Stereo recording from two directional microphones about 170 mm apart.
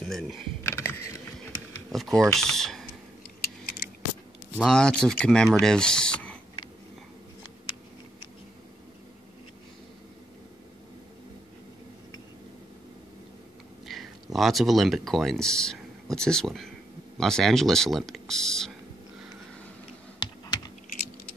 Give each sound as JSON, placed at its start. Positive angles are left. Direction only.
{"t": 0.0, "sound": "speech", "side_deg": 0}
{"t": 0.7, "sound": "a sound", "side_deg": 15}
{"t": 2.0, "sound": "speech", "side_deg": 0}
{"t": 4.6, "sound": "speech", "side_deg": 5}
{"t": 13.8, "sound": "speech", "side_deg": 0}
{"t": 20.2, "sound": "computer keyboard", "side_deg": 25}